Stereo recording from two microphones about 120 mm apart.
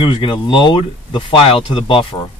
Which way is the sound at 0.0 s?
45° left (ahead or behind).